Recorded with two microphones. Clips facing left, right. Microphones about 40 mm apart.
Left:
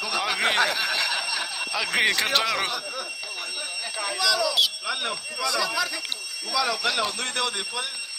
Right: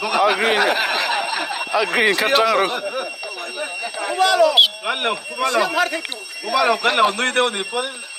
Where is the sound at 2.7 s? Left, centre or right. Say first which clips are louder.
Right 7 dB; right.